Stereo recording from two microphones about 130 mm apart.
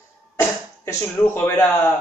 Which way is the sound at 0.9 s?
20° left (ahead or behind).